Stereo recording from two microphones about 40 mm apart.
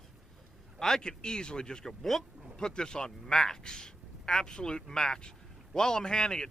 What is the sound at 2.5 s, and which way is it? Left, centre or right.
A man's voice, centre.